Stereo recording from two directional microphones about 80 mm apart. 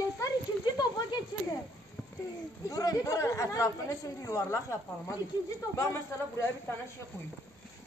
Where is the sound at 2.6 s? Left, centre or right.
Left.